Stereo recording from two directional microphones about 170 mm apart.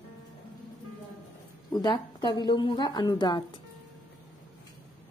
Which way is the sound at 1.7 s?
25° left (ahead or behind).